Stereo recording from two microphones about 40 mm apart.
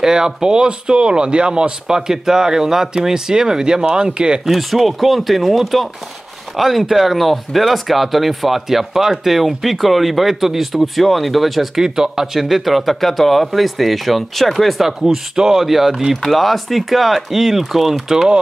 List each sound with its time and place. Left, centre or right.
0.0 s speech: centre
4.5 s speech: centre
11.8 s speech: centre
14.9 s speech: centre